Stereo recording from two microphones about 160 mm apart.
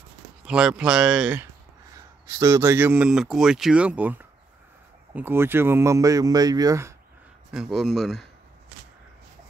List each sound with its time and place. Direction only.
0.4 s speech: 5° right (ahead or behind)
2.0 s a man's voice: 20° right (ahead or behind)
7.5 s speech: 5° right (ahead or behind)